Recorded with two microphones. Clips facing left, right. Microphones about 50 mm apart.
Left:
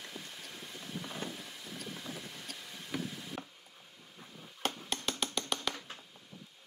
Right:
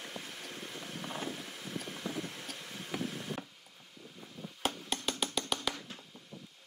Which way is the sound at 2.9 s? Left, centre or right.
Centre.